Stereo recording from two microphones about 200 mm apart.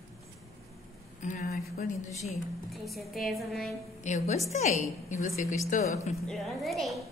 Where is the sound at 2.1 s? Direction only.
35° left (ahead or behind).